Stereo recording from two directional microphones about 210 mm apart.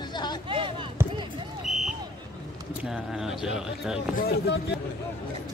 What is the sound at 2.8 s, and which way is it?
Speech, centre (ahead or behind).